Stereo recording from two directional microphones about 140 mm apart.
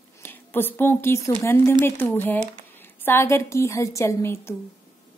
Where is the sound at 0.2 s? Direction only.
15° left (ahead or behind).